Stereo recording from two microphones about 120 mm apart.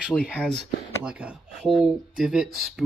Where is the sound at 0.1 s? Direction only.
20° left (ahead or behind).